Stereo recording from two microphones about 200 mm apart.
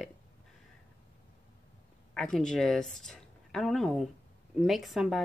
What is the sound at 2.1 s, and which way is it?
A woman's voice, 5° left (ahead or behind).